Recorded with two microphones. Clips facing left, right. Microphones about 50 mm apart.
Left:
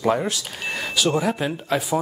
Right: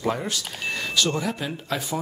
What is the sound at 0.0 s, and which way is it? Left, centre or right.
Speech, centre.